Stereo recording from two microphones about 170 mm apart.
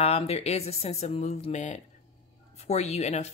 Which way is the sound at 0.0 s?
40° left (ahead or behind).